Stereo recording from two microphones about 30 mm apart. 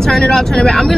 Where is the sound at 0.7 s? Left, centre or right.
Centre.